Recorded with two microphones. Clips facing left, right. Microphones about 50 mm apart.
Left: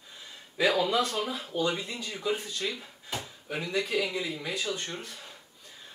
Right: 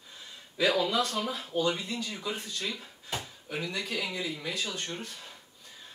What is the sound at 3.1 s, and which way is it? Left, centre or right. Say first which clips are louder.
Drawer open or close: left 1 dB; centre.